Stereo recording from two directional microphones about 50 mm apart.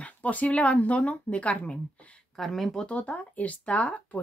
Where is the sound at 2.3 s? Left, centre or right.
Centre.